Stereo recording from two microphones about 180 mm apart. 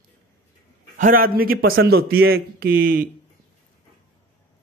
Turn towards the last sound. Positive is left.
turn(degrees=-55)  # may be behind; listen again after turning